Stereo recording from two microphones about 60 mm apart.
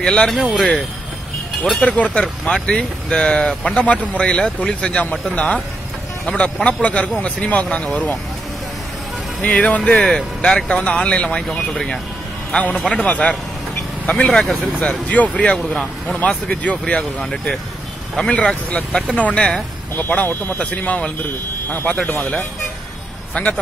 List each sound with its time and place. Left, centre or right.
0.0 s speech: centre
1.6 s speech: left
9.4 s speech: left
12.5 s speech: centre
23.3 s speech: left